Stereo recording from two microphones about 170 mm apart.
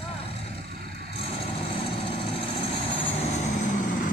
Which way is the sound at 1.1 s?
35° left (ahead or behind).